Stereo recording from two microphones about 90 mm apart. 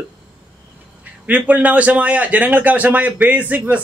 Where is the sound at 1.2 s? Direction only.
15° right (ahead or behind).